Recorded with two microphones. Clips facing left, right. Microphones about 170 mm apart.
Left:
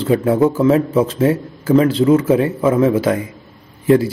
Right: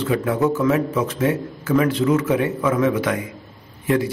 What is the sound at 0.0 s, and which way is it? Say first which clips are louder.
A man's voice: left 6 dB; 30° left (ahead or behind).